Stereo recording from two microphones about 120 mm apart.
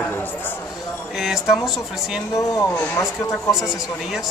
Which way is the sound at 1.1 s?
5° right (ahead or behind).